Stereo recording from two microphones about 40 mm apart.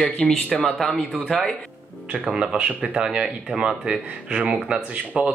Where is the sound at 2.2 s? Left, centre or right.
Right.